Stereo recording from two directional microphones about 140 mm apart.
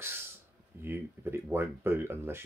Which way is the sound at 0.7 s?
15° right (ahead or behind).